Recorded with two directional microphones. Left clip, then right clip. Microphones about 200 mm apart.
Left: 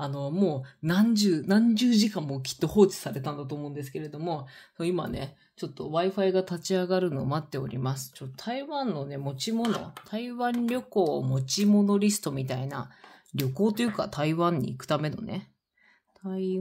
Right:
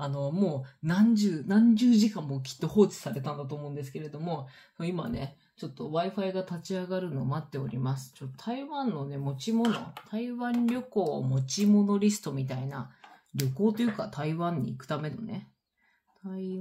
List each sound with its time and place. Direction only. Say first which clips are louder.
0.0 s speech: left 2 dB; 35° left (ahead or behind)
1.1 s speech: left 3 dB; 50° left (ahead or behind)